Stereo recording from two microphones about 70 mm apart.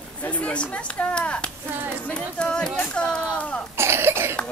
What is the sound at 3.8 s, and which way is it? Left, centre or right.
Cough, right.